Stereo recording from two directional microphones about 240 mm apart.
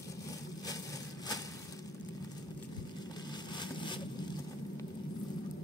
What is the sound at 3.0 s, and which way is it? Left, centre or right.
Vehicle, centre.